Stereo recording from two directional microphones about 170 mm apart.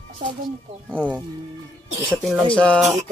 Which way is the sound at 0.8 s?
10° right (ahead or behind).